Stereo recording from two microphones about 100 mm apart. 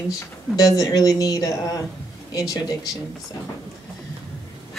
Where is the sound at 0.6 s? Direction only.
35° left (ahead or behind).